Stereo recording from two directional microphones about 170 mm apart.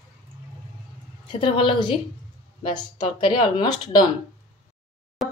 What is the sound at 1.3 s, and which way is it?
Speech, 30° left (ahead or behind).